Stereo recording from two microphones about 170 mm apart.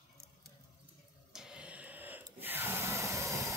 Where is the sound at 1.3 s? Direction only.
5° right (ahead or behind).